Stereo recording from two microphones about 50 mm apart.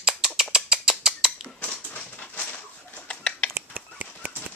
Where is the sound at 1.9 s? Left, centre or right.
Left.